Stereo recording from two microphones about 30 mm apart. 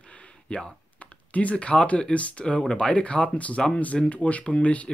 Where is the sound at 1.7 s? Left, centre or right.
Left.